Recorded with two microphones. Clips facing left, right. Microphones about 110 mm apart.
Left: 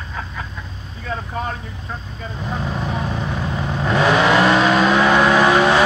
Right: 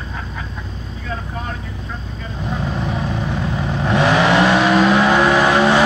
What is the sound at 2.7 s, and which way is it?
Vehicle, centre (ahead or behind).